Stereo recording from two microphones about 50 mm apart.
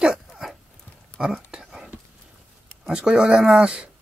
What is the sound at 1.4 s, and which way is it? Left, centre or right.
Whispering, centre.